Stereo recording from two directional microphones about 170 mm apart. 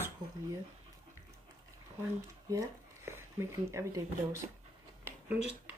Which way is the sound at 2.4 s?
15° right (ahead or behind).